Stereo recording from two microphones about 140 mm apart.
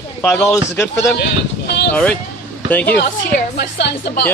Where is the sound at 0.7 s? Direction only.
20° left (ahead or behind).